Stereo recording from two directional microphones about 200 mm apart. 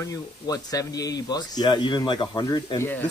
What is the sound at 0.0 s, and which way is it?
Speech, 15° left (ahead or behind).